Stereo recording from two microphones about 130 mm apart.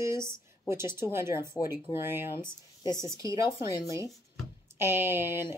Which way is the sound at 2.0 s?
15° right (ahead or behind).